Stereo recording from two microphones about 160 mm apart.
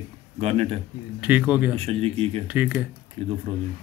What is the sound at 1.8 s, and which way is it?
Speech, 40° right (ahead or behind).